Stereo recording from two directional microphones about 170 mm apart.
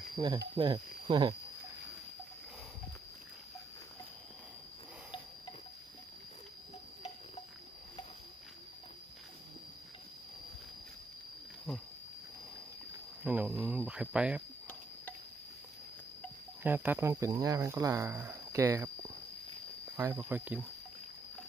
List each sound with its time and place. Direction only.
0.1 s speech: 25° right (ahead or behind)
13.2 s cricket: 10° right (ahead or behind)
16.6 s speech: 10° right (ahead or behind)